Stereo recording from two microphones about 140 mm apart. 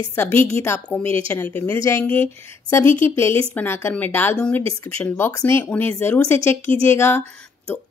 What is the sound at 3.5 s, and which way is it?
A woman's voice, 15° left (ahead or behind).